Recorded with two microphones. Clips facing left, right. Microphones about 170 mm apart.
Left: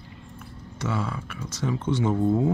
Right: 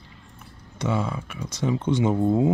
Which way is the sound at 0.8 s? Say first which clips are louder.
Right 3 dB; 20° right (ahead or behind).